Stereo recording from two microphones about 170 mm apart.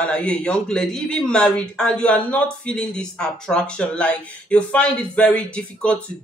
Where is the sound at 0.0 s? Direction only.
5° left (ahead or behind).